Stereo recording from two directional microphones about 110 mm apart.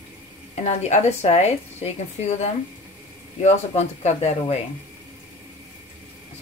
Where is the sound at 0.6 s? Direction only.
90° left.